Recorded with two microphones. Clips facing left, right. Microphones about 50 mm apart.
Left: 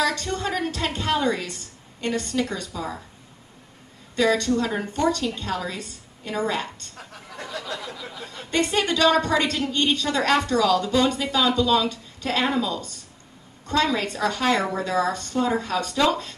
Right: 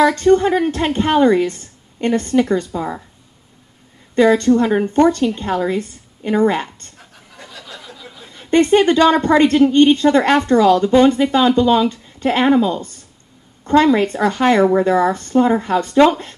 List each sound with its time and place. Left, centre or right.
0.0 s a woman's voice: right
4.1 s a woman's voice: right
7.3 s a sound: left
8.5 s a woman's voice: right